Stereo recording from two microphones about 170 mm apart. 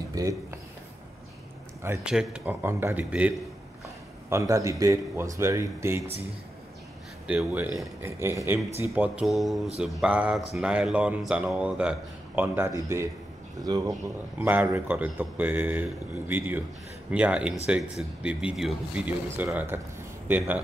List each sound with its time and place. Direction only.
0.1 s speech: 20° right (ahead or behind)
2.0 s a man's voice: 5° right (ahead or behind)
7.2 s a man's voice: 10° right (ahead or behind)